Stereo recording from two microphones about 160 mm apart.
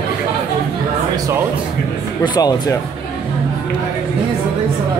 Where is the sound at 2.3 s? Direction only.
25° left (ahead or behind).